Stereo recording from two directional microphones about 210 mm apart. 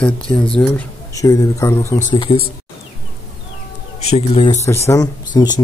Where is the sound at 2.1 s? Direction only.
25° left (ahead or behind).